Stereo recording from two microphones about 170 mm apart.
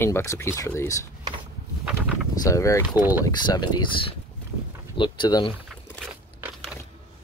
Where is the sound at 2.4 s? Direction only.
20° left (ahead or behind).